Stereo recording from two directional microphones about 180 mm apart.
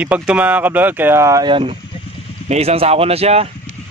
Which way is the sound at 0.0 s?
5° right (ahead or behind).